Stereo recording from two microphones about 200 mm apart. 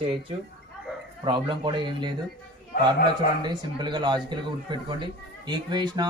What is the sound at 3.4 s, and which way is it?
Speech, 20° right (ahead or behind).